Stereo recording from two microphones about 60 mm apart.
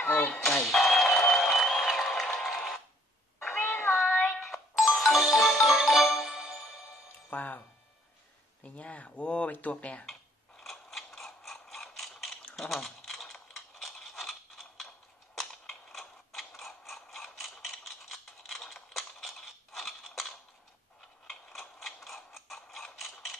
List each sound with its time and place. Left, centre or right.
0.3 s a sound: centre
3.4 s meow: centre
4.4 s marimba: centre
7.2 s music: left
8.6 s speech: left
10.6 s mechanisms: centre
12.5 s a sound: centre
15.9 s mechanisms: centre